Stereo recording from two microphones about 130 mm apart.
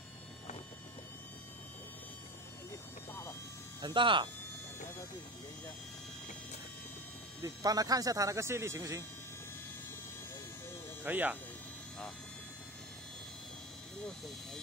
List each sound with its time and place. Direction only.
3.1 s vehicle: 20° left (ahead or behind)
3.8 s speech: 40° right (ahead or behind)
7.4 s speech: 30° right (ahead or behind)
11.1 s speech: 15° right (ahead or behind)
14.0 s speech: centre (ahead or behind)